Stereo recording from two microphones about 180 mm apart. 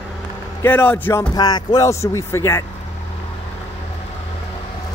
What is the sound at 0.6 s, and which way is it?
Speech, 10° left (ahead or behind).